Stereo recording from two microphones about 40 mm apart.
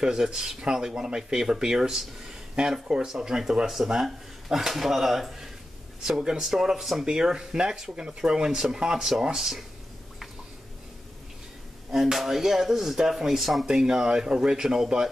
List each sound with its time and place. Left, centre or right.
0.0 s speech: centre
11.9 s speech: centre